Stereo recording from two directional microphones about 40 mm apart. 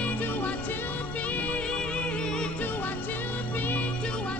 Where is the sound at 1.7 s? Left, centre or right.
Left.